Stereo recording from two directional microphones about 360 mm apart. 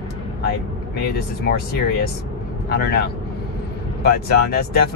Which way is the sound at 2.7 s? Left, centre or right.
Left.